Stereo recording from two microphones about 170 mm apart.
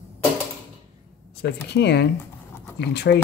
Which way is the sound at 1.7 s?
80° left.